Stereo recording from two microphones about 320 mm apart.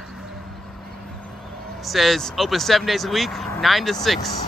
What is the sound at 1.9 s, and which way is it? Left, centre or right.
Speech, centre.